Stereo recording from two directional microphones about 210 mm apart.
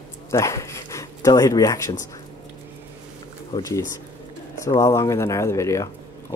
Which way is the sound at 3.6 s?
15° left (ahead or behind).